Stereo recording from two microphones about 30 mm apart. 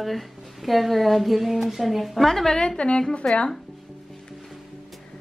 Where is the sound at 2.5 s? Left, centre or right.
Left.